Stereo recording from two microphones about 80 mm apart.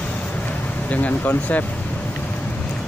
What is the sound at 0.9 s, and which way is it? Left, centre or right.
Speech, centre.